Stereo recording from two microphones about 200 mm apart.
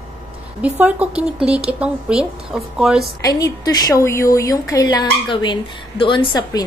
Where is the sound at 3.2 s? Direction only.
15° left (ahead or behind).